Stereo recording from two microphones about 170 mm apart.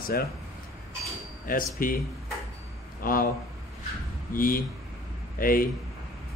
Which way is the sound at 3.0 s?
55° left (ahead or behind).